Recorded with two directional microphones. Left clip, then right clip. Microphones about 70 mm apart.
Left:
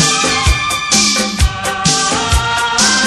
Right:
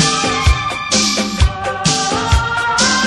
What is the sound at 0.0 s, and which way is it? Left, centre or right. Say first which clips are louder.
Music: left 2 dB; right.